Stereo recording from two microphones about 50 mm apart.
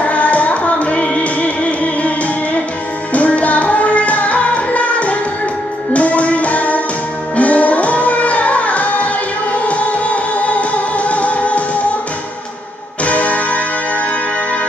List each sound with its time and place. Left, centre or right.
0.0 s music: left
13.0 s music: left